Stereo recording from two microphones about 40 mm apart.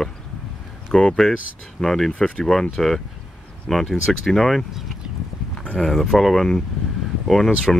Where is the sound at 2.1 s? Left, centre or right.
Left.